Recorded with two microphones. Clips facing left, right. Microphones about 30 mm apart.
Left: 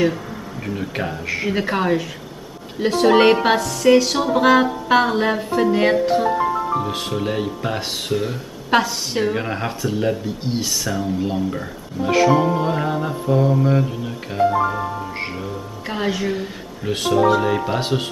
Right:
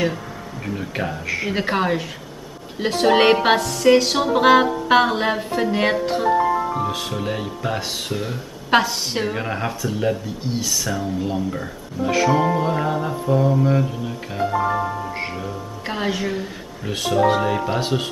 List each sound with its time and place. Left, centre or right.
0.7 s mantra: centre
1.5 s a woman's voice: centre
5.9 s mantra: centre
8.6 s mantra: centre
17.7 s speech: centre